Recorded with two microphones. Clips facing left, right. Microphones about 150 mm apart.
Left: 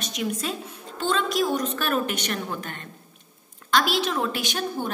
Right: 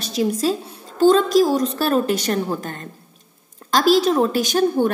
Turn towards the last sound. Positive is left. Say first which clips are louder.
# right 9 dB
turn(degrees=-40)  # may be behind; listen again after turning